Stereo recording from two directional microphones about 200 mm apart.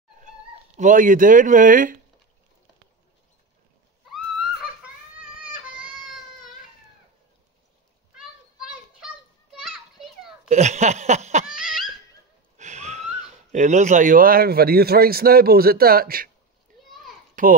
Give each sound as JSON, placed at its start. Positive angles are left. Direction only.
{"t": 0.7, "sound": "speech", "side_deg": -40}
{"t": 4.1, "sound": "a sound", "side_deg": 0}
{"t": 8.2, "sound": "children playing", "side_deg": 0}
{"t": 10.5, "sound": "a sound", "side_deg": -35}
{"t": 11.5, "sound": "laughter", "side_deg": -5}
{"t": 12.5, "sound": "speech", "side_deg": -35}
{"t": 17.4, "sound": "speech", "side_deg": -40}